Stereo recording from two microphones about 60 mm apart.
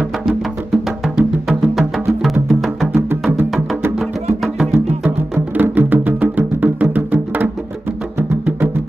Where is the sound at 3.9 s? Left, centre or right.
Centre.